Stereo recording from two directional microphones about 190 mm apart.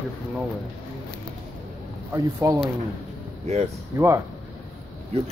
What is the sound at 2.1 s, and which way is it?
Speech, 15° right (ahead or behind).